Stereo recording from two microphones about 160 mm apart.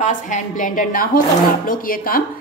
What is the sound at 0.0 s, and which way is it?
A woman's voice, 50° left (ahead or behind).